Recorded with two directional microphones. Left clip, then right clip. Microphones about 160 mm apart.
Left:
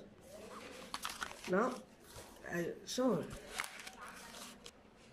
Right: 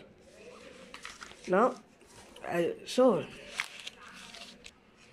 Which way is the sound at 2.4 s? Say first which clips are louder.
Right 10 dB; 25° right (ahead or behind).